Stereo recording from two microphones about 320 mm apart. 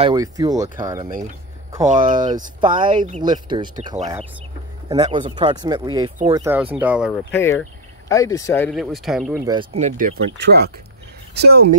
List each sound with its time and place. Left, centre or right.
0.0 s speech: centre
7.3 s speech: centre
9.5 s speech: centre